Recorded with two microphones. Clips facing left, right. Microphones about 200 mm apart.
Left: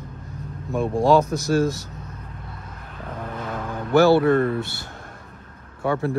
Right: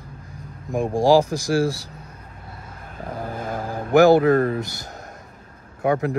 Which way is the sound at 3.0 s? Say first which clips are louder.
Right 2 dB; 35° right (ahead or behind).